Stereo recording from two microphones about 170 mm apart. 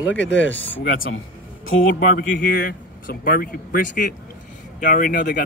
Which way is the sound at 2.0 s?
55° left (ahead or behind).